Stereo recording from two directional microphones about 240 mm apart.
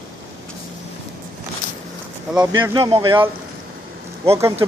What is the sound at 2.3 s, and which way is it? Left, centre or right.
Speech, centre.